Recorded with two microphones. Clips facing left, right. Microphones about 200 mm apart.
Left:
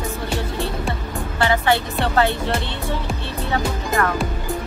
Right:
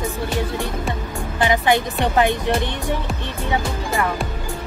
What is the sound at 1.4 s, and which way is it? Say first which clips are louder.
Speech: right 1 dB; 15° right (ahead or behind).